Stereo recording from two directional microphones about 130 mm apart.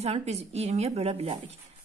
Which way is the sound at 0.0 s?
55° right (ahead or behind).